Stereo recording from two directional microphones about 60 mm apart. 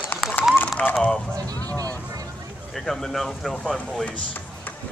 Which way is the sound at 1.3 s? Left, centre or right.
Right.